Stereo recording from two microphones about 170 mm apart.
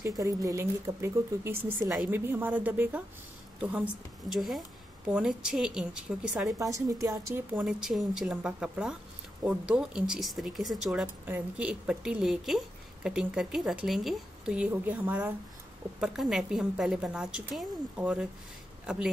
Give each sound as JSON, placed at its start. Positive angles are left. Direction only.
{"t": 0.0, "sound": "a woman's voice", "side_deg": -20}
{"t": 6.4, "sound": "a woman's voice", "side_deg": -20}